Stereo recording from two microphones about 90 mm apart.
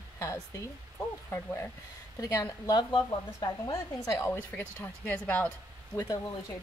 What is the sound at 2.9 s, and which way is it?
Speech, 55° left (ahead or behind).